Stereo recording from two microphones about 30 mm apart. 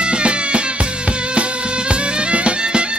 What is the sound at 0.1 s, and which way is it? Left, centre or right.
Music, right.